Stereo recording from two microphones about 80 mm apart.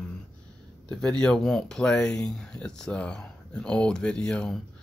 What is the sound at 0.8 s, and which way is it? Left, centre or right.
Speech, centre.